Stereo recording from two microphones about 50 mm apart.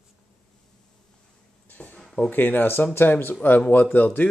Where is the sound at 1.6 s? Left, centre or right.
Left.